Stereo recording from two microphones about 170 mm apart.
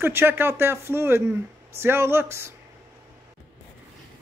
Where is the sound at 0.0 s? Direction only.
15° right (ahead or behind).